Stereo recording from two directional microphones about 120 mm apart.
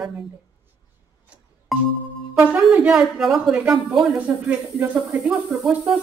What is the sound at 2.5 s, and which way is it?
A woman's voice, 10° right (ahead or behind).